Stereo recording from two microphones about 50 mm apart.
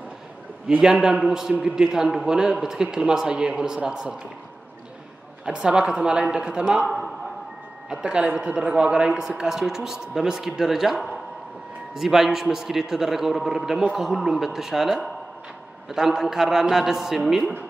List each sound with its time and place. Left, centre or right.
0.8 s a man's voice: centre
5.4 s speech: centre
7.9 s a man's voice: centre